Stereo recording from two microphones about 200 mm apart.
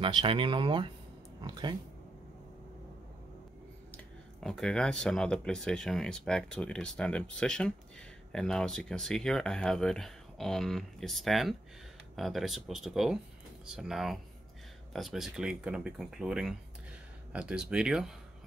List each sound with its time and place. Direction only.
0.0 s speech: 25° right (ahead or behind)
3.9 s speech: 5° left (ahead or behind)